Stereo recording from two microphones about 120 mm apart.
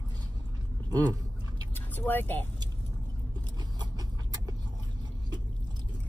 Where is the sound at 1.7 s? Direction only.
15° left (ahead or behind).